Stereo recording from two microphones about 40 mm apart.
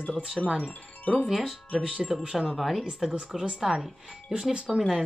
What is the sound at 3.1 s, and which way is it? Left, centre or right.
Speech, centre.